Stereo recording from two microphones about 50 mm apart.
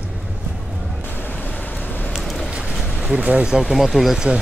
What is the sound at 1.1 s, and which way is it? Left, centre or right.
Vehicle, left.